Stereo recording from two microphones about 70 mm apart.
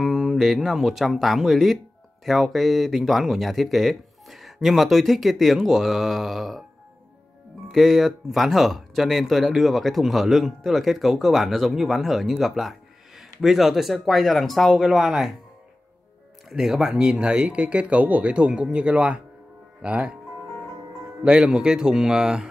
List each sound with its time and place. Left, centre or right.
0.0 s speech: centre
7.7 s speech: centre
16.4 s speech: centre
21.2 s speech: centre